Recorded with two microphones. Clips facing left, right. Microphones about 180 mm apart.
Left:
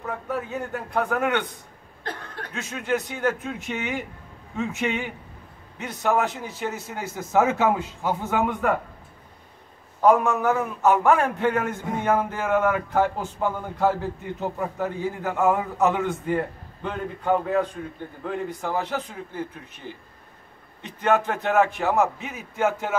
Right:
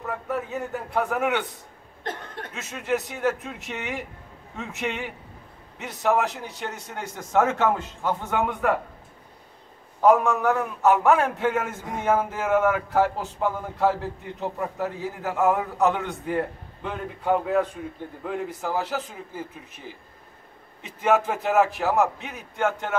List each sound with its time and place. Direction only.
0.0 s a man's voice: centre (ahead or behind)
2.0 s a sound: 20° right (ahead or behind)
2.5 s a man's voice: centre (ahead or behind)
10.0 s a man's voice: centre (ahead or behind)